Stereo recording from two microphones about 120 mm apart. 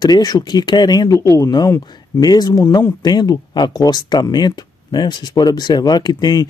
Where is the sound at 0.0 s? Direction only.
35° left (ahead or behind).